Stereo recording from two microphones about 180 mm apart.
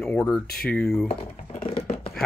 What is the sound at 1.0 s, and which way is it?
Speech, 35° left (ahead or behind).